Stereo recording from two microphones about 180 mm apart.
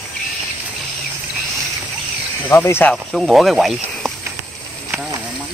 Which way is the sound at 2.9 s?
Centre (ahead or behind).